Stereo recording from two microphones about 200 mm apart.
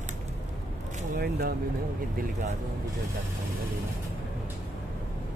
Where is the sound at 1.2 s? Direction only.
50° right (ahead or behind).